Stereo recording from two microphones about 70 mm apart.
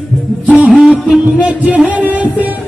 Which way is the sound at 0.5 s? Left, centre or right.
Centre.